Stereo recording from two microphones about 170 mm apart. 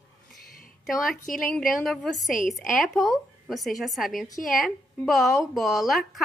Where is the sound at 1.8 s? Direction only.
Centre (ahead or behind).